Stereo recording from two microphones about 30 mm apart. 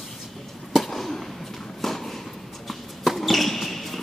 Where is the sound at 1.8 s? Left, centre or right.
Centre.